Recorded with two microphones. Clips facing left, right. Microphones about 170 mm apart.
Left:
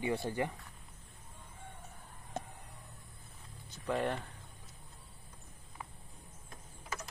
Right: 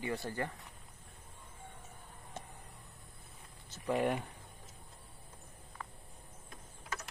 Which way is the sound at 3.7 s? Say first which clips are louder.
Right 2 dB; 10° right (ahead or behind).